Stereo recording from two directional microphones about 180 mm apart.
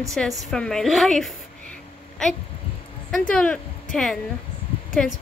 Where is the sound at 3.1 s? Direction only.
5° left (ahead or behind).